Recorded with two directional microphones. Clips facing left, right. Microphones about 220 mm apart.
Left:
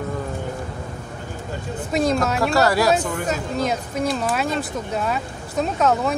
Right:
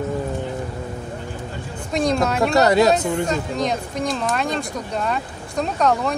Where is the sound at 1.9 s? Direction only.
5° left (ahead or behind).